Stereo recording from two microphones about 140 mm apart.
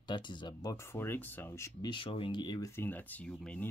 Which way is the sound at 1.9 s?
40° left (ahead or behind).